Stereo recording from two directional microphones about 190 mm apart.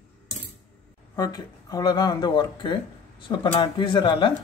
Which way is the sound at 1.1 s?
20° left (ahead or behind).